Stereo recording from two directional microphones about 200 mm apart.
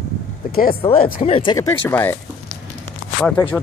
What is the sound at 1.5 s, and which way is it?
Speech, 10° left (ahead or behind).